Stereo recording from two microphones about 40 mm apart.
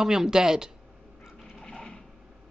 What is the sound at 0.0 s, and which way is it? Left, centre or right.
Speech, centre.